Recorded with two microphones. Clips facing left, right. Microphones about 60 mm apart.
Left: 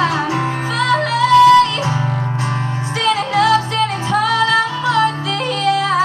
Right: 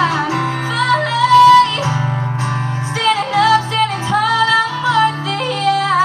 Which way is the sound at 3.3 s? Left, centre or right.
Right.